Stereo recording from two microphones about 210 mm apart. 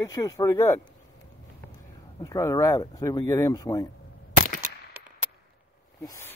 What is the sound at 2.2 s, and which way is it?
Speech, 15° left (ahead or behind).